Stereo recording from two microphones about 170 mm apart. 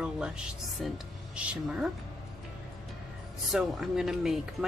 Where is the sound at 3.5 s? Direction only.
Centre (ahead or behind).